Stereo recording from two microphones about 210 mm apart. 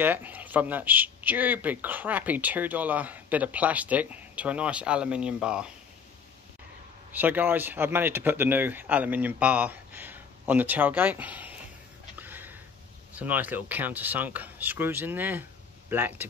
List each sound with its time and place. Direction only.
0.0 s a man's voice: 10° right (ahead or behind)
7.1 s a man's voice: 10° right (ahead or behind)
12.2 s sniff: 10° right (ahead or behind)
13.1 s a man's voice: 10° right (ahead or behind)